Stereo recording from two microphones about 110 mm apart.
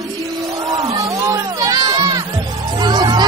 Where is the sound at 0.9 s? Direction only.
30° right (ahead or behind).